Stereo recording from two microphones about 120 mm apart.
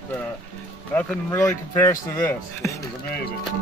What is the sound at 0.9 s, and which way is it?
Speech, 20° left (ahead or behind).